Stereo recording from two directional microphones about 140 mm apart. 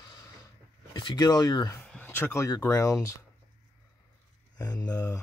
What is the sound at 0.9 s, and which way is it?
Speech, 30° left (ahead or behind).